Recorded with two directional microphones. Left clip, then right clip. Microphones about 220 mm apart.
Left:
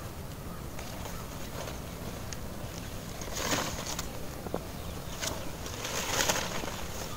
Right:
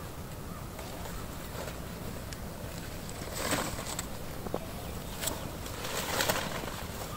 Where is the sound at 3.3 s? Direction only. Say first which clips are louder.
Left 1 dB; centre (ahead or behind).